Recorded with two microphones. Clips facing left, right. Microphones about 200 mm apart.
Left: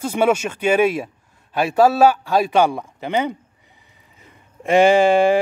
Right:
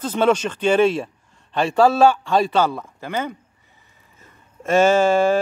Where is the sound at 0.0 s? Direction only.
10° left (ahead or behind).